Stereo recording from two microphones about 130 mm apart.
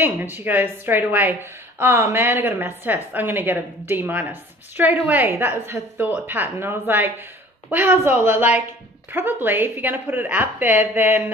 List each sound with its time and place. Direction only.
0.0 s a woman's voice: 15° right (ahead or behind)